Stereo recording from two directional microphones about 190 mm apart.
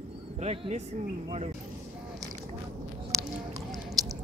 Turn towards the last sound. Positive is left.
turn(degrees=0)  # may be behind; listen again after turning